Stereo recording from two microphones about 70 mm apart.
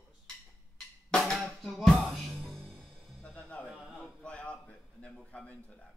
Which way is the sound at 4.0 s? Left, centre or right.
Centre.